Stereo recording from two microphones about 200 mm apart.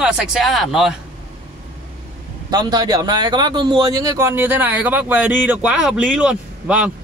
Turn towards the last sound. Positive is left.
turn(degrees=-5)  # may be behind; listen again after turning